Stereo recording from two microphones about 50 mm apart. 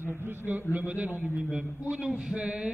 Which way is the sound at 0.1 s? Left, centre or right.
Right.